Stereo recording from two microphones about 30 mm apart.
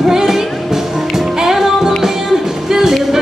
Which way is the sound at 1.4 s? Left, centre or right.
Centre.